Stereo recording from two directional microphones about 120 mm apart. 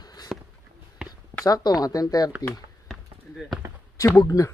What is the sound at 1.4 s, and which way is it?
Speech, 35° left (ahead or behind).